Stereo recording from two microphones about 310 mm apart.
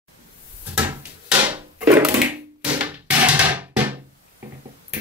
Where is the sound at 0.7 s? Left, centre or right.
Centre.